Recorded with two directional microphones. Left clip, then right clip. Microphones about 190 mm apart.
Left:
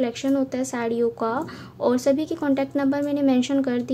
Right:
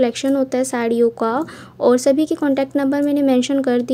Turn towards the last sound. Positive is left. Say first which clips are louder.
# right 6 dB
turn(degrees=-25)  # may be behind; listen again after turning